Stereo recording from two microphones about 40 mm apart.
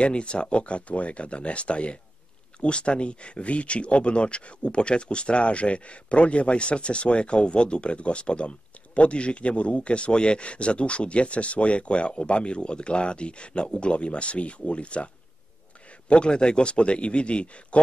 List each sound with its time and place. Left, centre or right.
0.0 s speech: left
16.1 s speech: left